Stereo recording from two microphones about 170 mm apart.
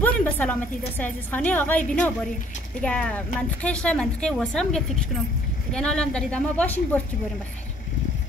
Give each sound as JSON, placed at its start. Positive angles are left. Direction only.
{"t": 0.0, "sound": "a woman's voice", "side_deg": 10}